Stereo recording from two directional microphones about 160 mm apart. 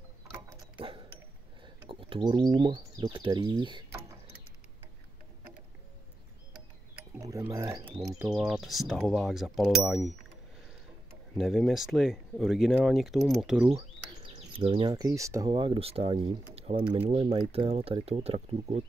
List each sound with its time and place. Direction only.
0.7 s a sound: 30° right (ahead or behind)
1.9 s speech: 30° right (ahead or behind)
7.2 s a sound: 20° right (ahead or behind)
7.5 s speech: 20° right (ahead or behind)
8.2 s speech: 5° right (ahead or behind)
11.3 s speech: centre (ahead or behind)
14.3 s speech: 30° right (ahead or behind)